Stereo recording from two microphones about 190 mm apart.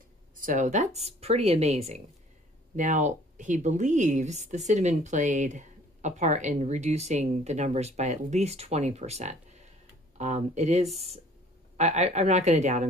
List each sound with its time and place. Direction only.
0.4 s speech: 40° right (ahead or behind)